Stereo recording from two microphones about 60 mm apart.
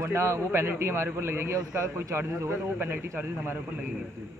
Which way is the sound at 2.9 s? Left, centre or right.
Right.